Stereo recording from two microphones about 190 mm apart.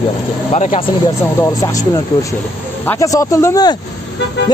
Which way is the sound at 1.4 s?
15° left (ahead or behind).